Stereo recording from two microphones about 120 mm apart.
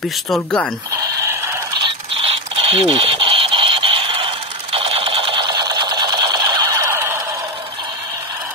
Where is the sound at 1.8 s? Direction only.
45° right (ahead or behind).